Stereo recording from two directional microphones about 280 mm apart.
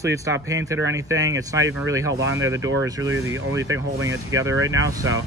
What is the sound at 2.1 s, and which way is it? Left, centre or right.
Speech, right.